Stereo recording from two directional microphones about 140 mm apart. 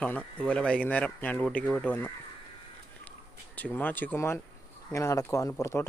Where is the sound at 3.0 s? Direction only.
10° left (ahead or behind).